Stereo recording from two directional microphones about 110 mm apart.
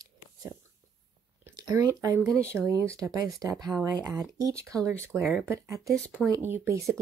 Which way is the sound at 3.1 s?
30° right (ahead or behind).